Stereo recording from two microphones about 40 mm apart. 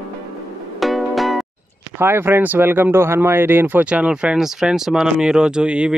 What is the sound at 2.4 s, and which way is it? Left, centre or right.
Speech, right.